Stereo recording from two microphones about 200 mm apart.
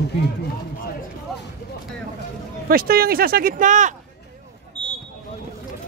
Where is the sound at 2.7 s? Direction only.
45° right (ahead or behind).